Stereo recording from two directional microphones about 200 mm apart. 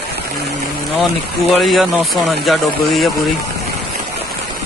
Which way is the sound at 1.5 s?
Centre (ahead or behind).